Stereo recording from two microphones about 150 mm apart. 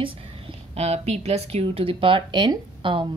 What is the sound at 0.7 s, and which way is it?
Speech, 45° right (ahead or behind).